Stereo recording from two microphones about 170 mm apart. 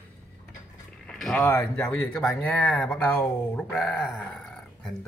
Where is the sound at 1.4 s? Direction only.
15° left (ahead or behind).